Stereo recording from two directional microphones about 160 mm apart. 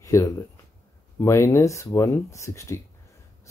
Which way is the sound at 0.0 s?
20° left (ahead or behind).